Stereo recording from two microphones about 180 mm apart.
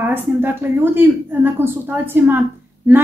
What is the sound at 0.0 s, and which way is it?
A woman's voice, 10° right (ahead or behind).